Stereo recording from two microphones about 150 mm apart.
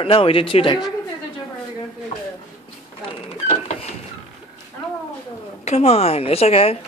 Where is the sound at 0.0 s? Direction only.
35° left (ahead or behind).